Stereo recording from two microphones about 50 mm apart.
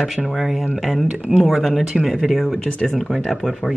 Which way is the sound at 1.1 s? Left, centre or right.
Centre.